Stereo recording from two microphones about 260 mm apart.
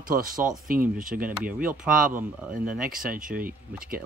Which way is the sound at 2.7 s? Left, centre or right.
Right.